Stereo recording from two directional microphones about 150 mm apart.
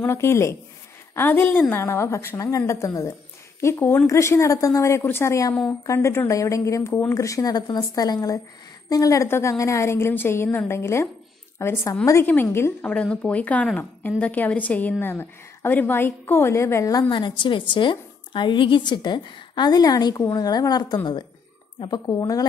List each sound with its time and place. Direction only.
0.0 s a woman's voice: 15° left (ahead or behind)